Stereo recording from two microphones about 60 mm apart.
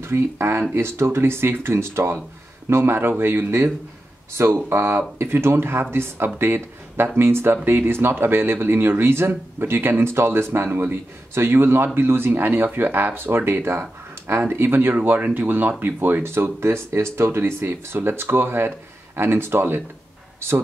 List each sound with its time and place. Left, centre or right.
0.0 s speech: right